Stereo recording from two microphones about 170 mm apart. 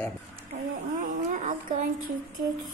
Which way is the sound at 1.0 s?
45° right (ahead or behind).